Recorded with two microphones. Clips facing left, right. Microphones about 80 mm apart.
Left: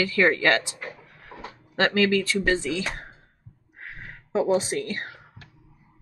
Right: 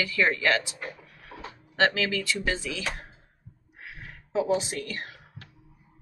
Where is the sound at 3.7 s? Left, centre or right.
Left.